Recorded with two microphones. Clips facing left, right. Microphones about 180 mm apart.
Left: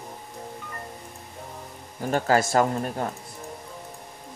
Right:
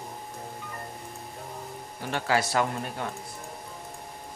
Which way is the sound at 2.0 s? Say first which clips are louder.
Left 5 dB; 45° left (ahead or behind).